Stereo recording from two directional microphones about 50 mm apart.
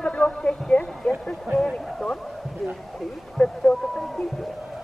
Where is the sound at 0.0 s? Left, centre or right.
Left.